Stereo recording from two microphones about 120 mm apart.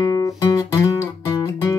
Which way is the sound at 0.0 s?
30° left (ahead or behind).